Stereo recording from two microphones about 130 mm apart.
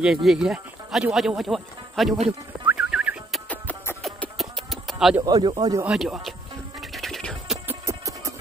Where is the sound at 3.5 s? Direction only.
15° left (ahead or behind).